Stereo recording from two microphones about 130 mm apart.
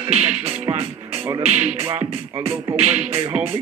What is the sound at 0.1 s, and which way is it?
Music, 55° right (ahead or behind).